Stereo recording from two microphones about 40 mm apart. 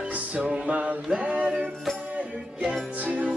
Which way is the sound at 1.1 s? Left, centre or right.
Right.